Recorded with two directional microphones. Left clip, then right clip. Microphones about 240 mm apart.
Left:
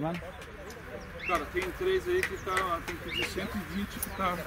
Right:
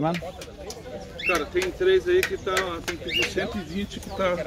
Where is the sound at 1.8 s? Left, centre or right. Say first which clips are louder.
Right 9 dB; centre.